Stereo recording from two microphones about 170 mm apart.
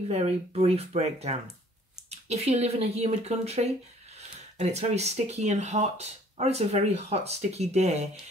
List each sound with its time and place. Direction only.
0.1 s speech: 40° right (ahead or behind)